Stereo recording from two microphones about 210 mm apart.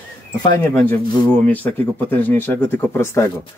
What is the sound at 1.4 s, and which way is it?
Speech, 5° left (ahead or behind).